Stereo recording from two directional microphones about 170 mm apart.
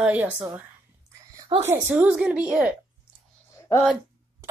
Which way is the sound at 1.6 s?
10° right (ahead or behind).